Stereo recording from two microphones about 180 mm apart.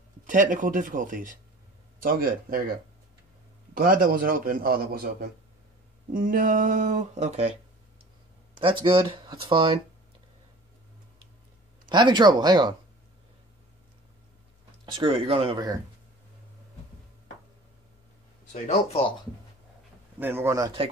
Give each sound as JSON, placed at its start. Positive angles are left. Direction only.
{"t": 0.3, "sound": "a man's voice", "side_deg": -45}
{"t": 3.7, "sound": "a man's voice", "side_deg": -50}
{"t": 8.5, "sound": "speech", "side_deg": -30}
{"t": 11.9, "sound": "speech", "side_deg": -25}
{"t": 14.9, "sound": "speech", "side_deg": -30}
{"t": 18.5, "sound": "speech", "side_deg": 35}
{"t": 20.2, "sound": "speech", "side_deg": -10}